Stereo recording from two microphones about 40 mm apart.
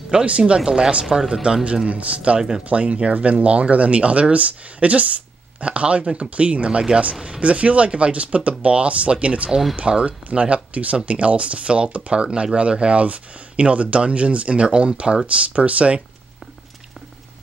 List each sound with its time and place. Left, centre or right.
0.1 s speech: right
1.6 s speech: right